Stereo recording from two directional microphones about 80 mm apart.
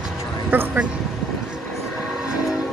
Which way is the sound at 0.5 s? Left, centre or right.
Right.